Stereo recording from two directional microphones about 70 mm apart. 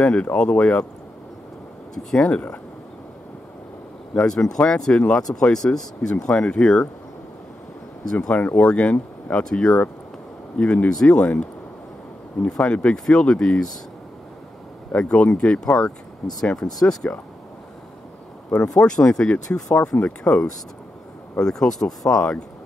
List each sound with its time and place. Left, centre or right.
0.0 s speech: centre
2.0 s speech: centre
4.1 s speech: centre
8.1 s speech: centre
8.4 s speech: left
15.0 s speech: centre
18.9 s speech: centre